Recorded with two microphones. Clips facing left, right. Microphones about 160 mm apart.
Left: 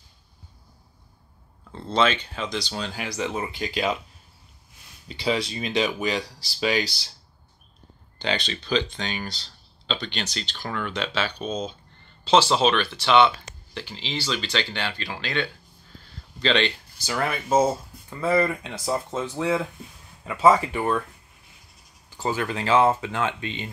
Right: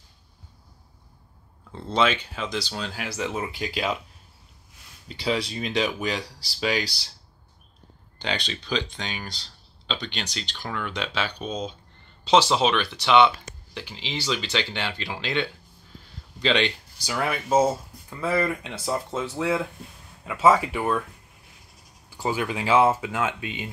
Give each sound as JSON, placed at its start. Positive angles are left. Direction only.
{"t": 1.7, "sound": "speech", "side_deg": -10}
{"t": 5.0, "sound": "speech", "side_deg": 0}
{"t": 8.2, "sound": "speech", "side_deg": -10}
{"t": 10.5, "sound": "speech", "side_deg": 0}
{"t": 10.9, "sound": "speech", "side_deg": -15}
{"t": 22.1, "sound": "speech", "side_deg": -10}